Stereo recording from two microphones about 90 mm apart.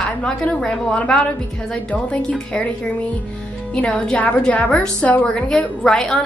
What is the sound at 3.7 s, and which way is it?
A woman's voice, 10° left (ahead or behind).